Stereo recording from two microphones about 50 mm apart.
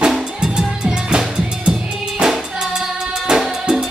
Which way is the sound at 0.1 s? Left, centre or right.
Centre.